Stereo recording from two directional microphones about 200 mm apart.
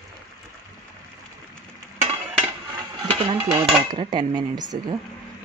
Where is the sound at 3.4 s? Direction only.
20° right (ahead or behind).